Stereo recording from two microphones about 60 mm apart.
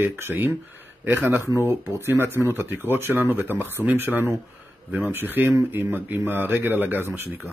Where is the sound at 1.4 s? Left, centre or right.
Right.